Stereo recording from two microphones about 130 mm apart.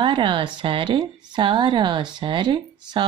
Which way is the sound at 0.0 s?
40° right (ahead or behind).